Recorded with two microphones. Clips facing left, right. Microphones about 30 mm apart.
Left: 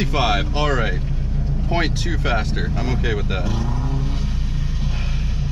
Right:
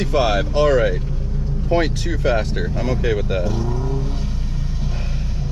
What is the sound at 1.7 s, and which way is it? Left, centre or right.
Speech, centre.